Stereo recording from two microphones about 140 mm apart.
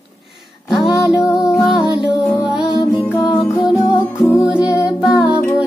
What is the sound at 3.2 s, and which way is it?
Music, centre (ahead or behind).